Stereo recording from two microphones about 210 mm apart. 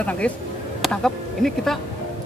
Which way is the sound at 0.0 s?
5° left (ahead or behind).